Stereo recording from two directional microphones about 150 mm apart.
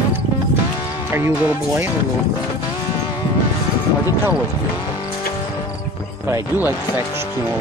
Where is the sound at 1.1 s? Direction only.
15° right (ahead or behind).